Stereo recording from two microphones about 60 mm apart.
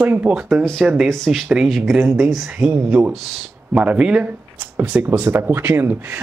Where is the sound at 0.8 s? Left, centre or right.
Centre.